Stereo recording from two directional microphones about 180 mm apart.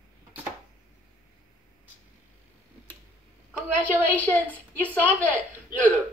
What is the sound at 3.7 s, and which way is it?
A woman's voice, 10° left (ahead or behind).